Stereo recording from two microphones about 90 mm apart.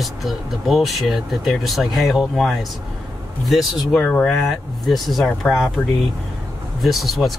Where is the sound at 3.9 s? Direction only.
10° left (ahead or behind).